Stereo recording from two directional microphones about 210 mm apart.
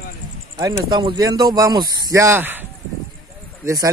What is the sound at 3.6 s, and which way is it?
Speech, 15° right (ahead or behind).